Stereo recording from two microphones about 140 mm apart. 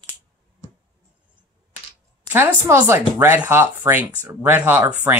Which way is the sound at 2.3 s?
15° right (ahead or behind).